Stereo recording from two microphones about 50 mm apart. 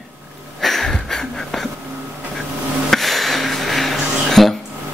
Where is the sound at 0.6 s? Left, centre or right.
Centre.